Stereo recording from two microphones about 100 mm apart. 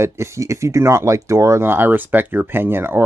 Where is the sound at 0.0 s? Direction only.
30° right (ahead or behind).